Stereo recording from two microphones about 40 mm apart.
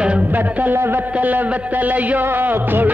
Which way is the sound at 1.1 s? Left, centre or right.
Right.